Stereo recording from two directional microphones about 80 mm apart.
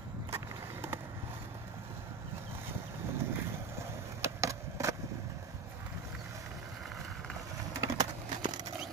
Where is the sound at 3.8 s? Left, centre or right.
Right.